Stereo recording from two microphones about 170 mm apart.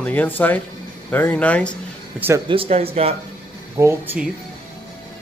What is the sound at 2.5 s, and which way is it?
Speech, 35° right (ahead or behind).